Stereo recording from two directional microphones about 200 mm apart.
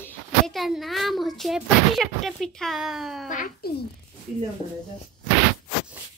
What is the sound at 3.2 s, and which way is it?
Speech, 40° left (ahead or behind).